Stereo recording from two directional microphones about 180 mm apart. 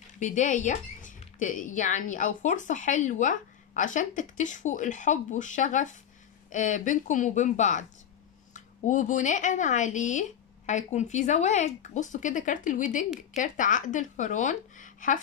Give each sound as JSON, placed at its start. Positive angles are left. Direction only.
{"t": 0.2, "sound": "speech", "side_deg": 45}